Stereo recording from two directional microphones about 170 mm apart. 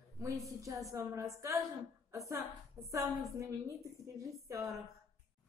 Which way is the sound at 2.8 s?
15° right (ahead or behind).